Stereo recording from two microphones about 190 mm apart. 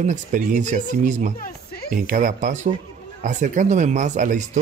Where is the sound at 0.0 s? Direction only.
40° right (ahead or behind).